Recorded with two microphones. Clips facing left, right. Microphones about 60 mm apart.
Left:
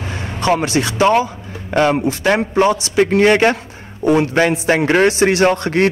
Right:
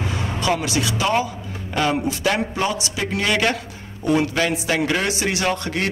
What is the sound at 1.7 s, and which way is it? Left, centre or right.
A man's voice, left.